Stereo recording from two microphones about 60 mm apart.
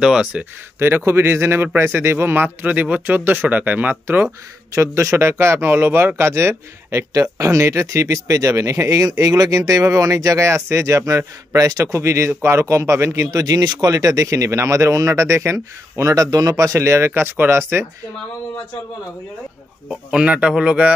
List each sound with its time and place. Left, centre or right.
0.0 s speech: centre
0.7 s speech: right
4.7 s speech: right
20.1 s a man's voice: centre